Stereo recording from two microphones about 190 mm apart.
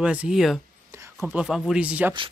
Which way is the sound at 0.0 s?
5° right (ahead or behind).